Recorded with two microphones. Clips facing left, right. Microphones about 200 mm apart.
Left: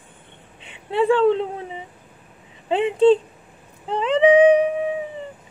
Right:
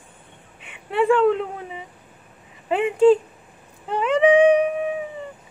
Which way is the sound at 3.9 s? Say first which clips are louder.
Left 1 dB; 30° left (ahead or behind).